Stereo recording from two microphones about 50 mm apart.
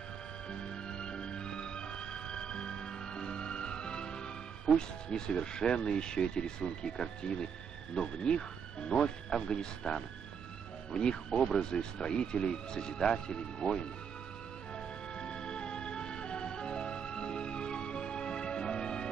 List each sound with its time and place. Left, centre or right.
0.5 s music: centre
7.9 s speech: centre
14.8 s music: centre